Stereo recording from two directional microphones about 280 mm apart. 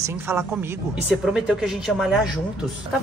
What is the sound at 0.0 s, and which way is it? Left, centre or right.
A woman's voice, centre.